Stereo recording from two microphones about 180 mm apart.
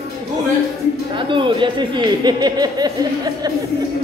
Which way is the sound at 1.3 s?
25° right (ahead or behind).